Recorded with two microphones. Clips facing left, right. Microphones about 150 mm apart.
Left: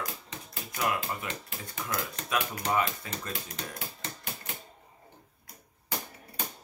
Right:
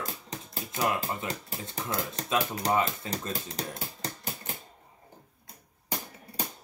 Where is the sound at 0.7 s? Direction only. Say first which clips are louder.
Right 2 dB; 30° right (ahead or behind).